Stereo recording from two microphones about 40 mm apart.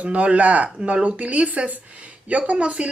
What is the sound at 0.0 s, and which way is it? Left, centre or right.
Speech, right.